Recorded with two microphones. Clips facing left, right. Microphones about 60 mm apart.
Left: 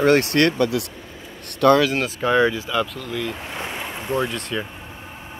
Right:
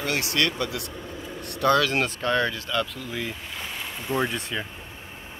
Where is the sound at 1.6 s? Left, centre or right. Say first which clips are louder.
Left 6 dB; left.